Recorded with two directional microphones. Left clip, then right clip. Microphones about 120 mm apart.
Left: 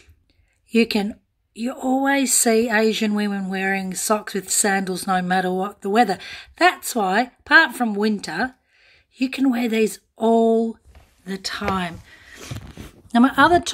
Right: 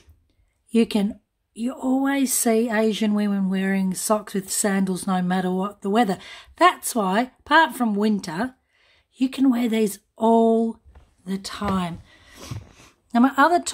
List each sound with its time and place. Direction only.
0.7 s speech: 30° right (ahead or behind)
11.2 s a sound: 20° right (ahead or behind)
13.1 s a woman's voice: 5° right (ahead or behind)